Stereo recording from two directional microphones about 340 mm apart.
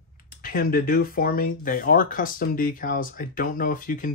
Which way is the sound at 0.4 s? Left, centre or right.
Left.